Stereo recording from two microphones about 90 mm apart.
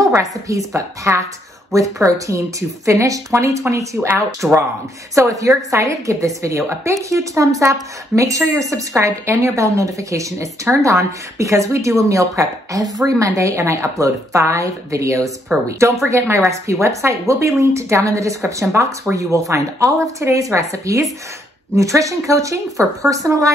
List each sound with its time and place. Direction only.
0.0 s a woman's voice: 35° right (ahead or behind)